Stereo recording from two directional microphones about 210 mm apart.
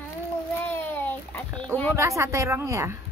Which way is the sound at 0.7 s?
10° left (ahead or behind).